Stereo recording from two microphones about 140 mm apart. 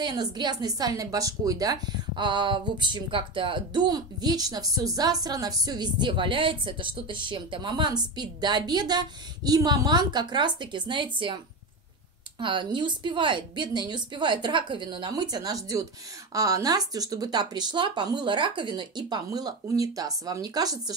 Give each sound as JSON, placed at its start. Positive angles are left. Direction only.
{"t": 0.0, "sound": "speech", "side_deg": -30}
{"t": 12.4, "sound": "speech", "side_deg": -35}